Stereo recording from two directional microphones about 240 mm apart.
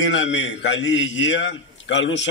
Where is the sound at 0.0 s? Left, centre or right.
Left.